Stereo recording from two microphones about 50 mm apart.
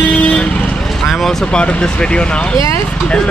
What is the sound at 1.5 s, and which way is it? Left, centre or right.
Speech, centre.